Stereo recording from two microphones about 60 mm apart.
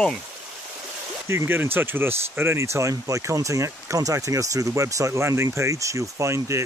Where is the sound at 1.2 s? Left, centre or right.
Right.